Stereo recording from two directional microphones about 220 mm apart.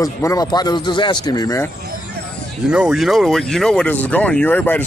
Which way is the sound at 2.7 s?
5° right (ahead or behind).